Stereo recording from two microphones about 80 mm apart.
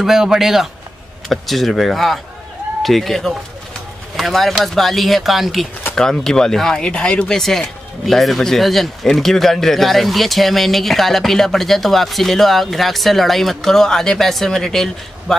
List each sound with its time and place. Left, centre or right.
0.0 s speech: centre